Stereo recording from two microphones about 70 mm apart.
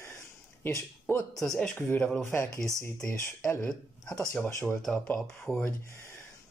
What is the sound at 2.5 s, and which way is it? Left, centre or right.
Speech, right.